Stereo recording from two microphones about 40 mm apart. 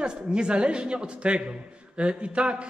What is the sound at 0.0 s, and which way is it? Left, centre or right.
A man's voice, right.